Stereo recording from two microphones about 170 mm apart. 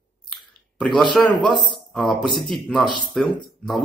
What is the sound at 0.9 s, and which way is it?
Speech, centre (ahead or behind).